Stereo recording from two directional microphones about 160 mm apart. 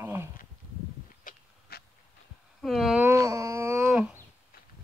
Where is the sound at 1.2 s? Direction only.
65° left (ahead or behind).